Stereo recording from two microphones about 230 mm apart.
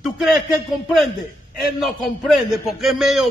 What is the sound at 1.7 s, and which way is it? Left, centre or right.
A man's voice, centre.